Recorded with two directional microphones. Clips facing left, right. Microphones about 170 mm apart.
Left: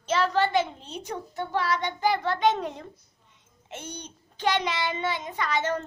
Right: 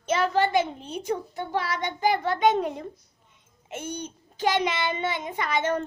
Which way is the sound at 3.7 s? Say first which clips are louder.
Right 5 dB; 10° right (ahead or behind).